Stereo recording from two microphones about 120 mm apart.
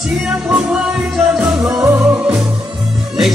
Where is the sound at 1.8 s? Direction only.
20° right (ahead or behind).